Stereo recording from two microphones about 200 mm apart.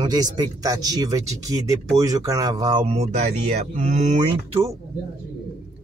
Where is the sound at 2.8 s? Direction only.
30° right (ahead or behind).